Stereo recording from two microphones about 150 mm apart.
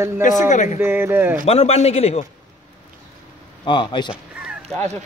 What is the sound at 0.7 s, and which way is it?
Speech, 15° right (ahead or behind).